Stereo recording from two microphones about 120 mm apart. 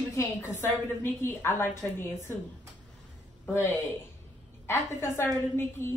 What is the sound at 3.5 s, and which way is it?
A woman's voice, 25° left (ahead or behind).